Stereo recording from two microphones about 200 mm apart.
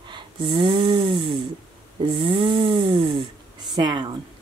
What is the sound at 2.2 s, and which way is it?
Speech, 25° right (ahead or behind).